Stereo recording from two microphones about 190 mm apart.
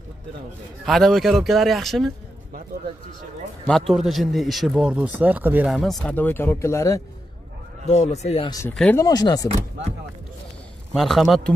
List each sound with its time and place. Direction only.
0.8 s speech: centre (ahead or behind)
3.6 s speech: centre (ahead or behind)
7.8 s speech: 35° left (ahead or behind)
8.5 s speech: 15° left (ahead or behind)
9.0 s speech: 20° left (ahead or behind)
10.9 s speech: centre (ahead or behind)